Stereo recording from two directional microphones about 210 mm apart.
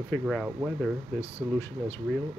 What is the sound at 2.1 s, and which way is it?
Speech, 5° right (ahead or behind).